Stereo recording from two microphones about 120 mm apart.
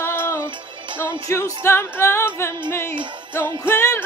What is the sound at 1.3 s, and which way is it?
Music, 25° left (ahead or behind).